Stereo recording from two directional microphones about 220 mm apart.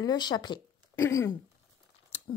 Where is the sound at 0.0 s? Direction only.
20° left (ahead or behind).